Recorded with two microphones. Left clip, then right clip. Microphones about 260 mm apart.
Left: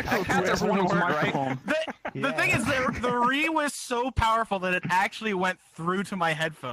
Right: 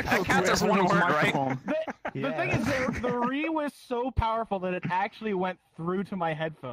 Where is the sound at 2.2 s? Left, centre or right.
Left.